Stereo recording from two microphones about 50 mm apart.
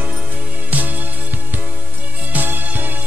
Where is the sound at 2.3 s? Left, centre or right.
Right.